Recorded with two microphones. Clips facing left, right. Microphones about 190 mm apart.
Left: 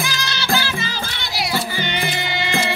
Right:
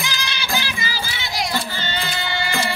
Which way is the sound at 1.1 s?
Centre (ahead or behind).